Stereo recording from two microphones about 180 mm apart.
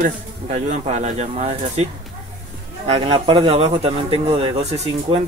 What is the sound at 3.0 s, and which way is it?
Speech, 25° right (ahead or behind).